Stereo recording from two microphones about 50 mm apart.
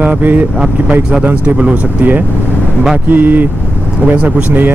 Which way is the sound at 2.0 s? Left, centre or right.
Right.